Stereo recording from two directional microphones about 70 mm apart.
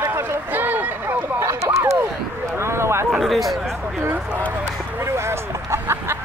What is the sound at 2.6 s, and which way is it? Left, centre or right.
Speech, right.